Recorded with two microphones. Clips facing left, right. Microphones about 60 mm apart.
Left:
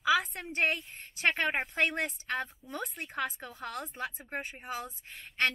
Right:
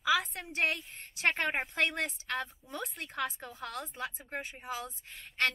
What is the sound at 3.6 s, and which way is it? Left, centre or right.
Speech, left.